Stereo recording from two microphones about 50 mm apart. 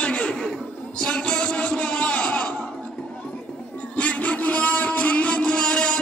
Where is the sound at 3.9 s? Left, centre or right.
Left.